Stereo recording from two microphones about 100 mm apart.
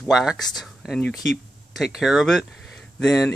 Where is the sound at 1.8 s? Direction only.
5° right (ahead or behind).